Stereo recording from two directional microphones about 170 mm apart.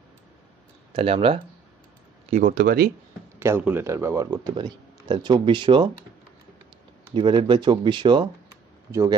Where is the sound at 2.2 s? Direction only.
50° right (ahead or behind).